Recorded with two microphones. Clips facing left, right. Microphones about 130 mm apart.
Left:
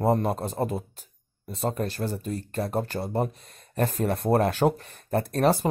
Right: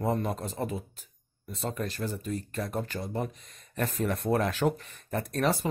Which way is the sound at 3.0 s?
55° left (ahead or behind).